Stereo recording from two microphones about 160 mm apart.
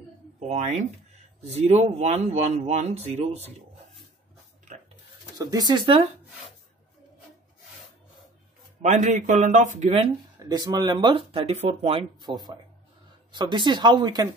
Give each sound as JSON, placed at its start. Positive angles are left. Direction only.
{"t": 0.5, "sound": "speech", "side_deg": -40}
{"t": 5.4, "sound": "speech", "side_deg": -25}
{"t": 8.8, "sound": "speech", "side_deg": -50}
{"t": 9.8, "sound": "speech", "side_deg": -35}